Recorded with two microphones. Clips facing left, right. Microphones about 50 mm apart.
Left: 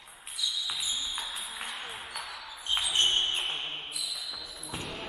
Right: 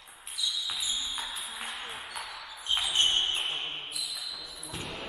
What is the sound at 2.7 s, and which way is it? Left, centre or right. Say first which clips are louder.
Basketball bounce: even; centre.